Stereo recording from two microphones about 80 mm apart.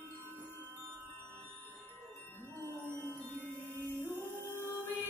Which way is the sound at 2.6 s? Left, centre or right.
Right.